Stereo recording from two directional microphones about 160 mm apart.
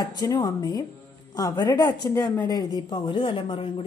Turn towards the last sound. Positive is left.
turn(degrees=30)  # may be behind; listen again after turning